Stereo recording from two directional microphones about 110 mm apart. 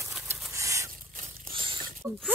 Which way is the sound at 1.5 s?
50° right (ahead or behind).